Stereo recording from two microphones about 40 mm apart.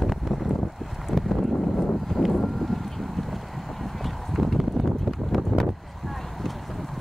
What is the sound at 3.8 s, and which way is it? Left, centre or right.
Horse, centre.